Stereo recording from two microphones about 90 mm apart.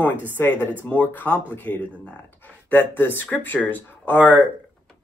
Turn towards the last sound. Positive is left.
turn(degrees=20)  # may be behind; listen again after turning